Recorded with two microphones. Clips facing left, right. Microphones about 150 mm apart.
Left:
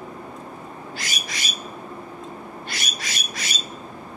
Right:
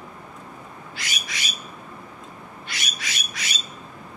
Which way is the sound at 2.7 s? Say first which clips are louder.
Right 1 dB; 40° left (ahead or behind).